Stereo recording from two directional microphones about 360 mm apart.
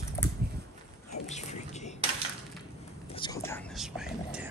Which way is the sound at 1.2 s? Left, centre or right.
Centre.